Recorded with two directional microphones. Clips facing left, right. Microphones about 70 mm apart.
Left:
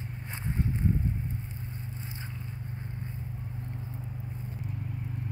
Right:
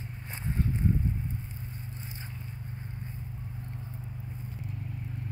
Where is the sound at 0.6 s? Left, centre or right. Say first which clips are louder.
Even; left.